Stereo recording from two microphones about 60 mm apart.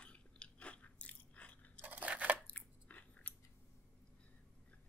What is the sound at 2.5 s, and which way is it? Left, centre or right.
Chewing, left.